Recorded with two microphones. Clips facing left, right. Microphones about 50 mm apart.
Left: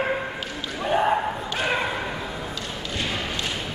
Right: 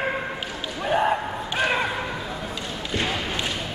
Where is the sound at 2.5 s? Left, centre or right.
Right.